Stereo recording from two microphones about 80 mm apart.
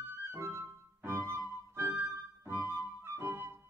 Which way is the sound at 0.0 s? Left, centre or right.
Right.